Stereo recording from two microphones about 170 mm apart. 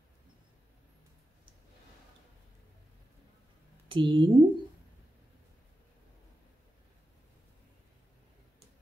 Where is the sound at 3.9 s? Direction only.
30° right (ahead or behind).